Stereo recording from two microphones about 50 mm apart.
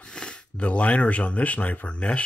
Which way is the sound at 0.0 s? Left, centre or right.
Centre.